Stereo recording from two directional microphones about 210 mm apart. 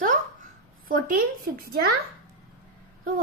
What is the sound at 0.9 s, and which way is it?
Speech, 45° right (ahead or behind).